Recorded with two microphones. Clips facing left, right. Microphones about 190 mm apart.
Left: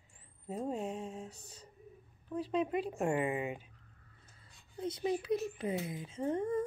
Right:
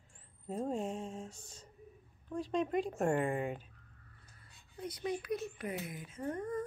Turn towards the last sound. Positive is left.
turn(degrees=25)  # may be behind; listen again after turning